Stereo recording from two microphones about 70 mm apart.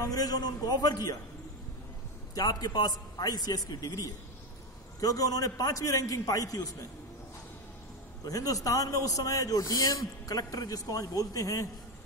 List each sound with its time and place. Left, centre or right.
0.0 s a man's voice: left
2.3 s a man's voice: left
8.3 s a man's voice: left